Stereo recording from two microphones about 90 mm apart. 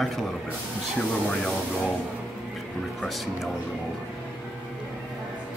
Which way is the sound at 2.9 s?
Centre (ahead or behind).